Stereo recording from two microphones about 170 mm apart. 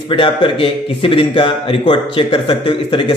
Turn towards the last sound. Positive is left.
turn(degrees=30)  # may be behind; listen again after turning